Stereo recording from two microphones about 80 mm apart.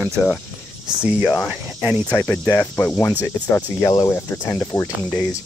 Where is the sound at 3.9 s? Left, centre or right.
Left.